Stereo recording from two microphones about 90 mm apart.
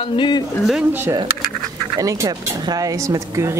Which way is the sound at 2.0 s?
40° right (ahead or behind).